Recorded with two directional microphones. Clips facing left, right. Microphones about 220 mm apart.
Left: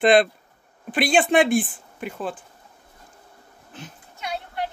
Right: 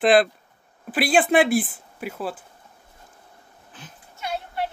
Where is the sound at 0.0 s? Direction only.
5° right (ahead or behind).